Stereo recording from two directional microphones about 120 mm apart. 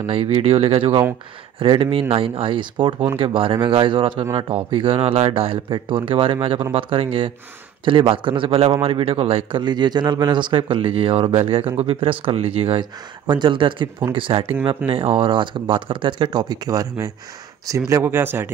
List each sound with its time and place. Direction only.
0.0 s speech: 50° right (ahead or behind); by 18.5 s 20° right (ahead or behind)